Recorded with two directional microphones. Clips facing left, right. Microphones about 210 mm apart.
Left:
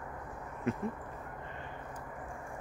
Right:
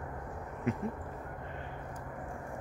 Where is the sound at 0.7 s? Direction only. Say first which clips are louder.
Even; 15° right (ahead or behind).